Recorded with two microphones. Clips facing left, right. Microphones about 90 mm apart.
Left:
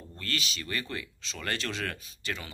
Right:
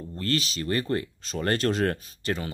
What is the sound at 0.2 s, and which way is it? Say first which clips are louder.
Speech: right 8 dB; 35° right (ahead or behind).